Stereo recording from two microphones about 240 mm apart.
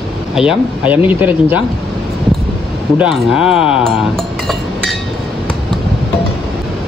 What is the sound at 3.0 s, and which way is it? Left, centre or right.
Speech, centre.